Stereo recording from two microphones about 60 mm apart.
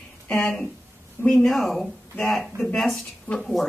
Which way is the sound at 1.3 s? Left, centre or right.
Centre.